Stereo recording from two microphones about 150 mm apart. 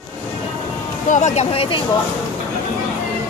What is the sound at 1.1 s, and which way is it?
Speech, 50° left (ahead or behind).